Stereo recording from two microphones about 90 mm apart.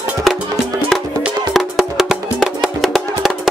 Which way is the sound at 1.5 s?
5° right (ahead or behind).